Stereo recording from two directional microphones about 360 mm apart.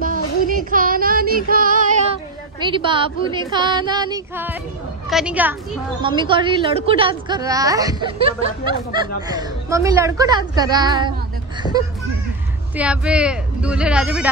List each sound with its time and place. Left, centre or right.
0.0 s child singing: right
2.7 s a woman's voice: centre
11.6 s speech: centre
12.7 s speech: centre